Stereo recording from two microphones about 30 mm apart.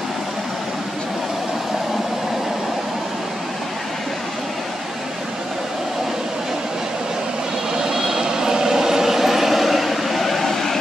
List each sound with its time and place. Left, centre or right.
7.8 s vehicle: centre